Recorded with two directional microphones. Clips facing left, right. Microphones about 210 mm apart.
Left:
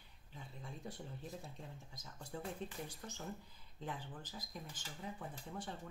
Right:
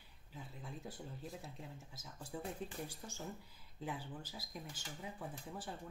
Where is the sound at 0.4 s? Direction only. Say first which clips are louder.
Right 1 dB; centre (ahead or behind).